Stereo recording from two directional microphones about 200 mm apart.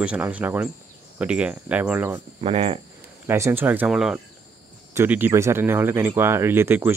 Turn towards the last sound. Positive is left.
turn(degrees=-10)  # may be behind; listen again after turning